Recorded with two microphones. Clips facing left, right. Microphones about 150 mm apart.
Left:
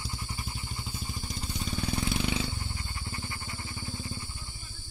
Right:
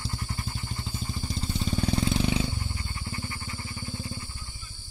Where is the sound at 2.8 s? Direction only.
15° left (ahead or behind).